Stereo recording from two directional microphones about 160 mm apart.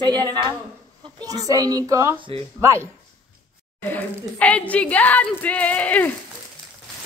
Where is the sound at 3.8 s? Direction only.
10° left (ahead or behind).